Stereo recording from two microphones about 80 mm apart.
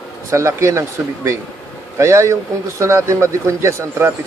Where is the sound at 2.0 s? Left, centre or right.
Right.